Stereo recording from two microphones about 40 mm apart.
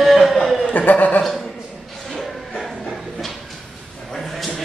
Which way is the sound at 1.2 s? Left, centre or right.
Centre.